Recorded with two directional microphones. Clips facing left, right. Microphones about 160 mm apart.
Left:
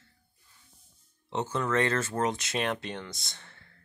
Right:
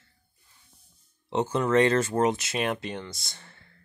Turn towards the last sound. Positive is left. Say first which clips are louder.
# right 1 dB
turn(degrees=-5)  # may be behind; listen again after turning